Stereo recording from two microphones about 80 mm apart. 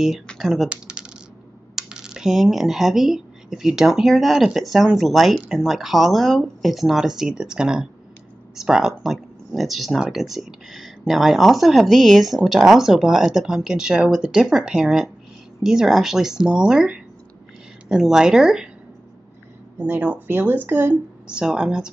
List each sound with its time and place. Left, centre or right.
0.4 s speech: centre
19.8 s speech: centre